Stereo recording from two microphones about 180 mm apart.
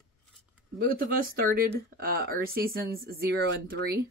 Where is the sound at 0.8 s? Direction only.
55° right (ahead or behind).